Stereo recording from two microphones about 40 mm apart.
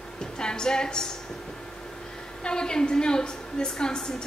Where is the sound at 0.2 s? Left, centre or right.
Centre.